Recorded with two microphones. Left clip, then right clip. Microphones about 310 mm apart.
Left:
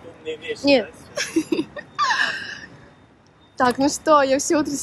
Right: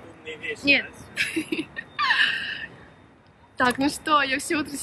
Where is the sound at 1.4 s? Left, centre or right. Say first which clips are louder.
Left 5 dB; right.